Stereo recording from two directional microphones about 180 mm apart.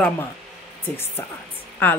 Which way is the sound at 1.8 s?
10° left (ahead or behind).